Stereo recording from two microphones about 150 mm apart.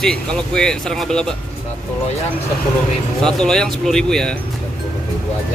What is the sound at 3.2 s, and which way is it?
Speech, 5° left (ahead or behind).